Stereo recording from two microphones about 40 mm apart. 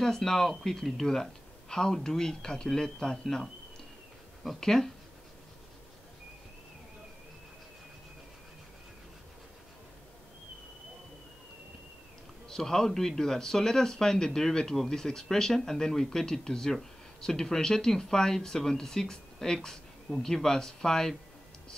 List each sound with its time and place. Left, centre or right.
0.0 s speech: centre
12.4 s speech: centre